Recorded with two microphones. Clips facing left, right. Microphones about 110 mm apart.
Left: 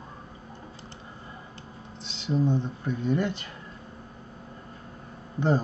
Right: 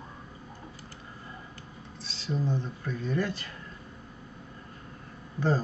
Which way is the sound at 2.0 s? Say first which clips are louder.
Left 6 dB; 20° left (ahead or behind).